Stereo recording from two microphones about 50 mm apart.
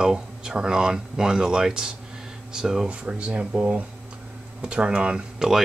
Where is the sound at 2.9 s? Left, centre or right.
Right.